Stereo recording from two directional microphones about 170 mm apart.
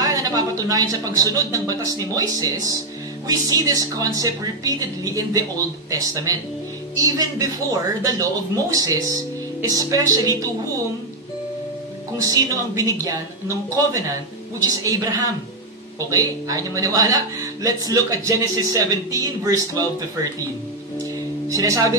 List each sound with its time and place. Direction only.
0.0 s a man's voice: 20° right (ahead or behind)
12.2 s a man's voice: 20° right (ahead or behind)
21.5 s speech: 20° right (ahead or behind)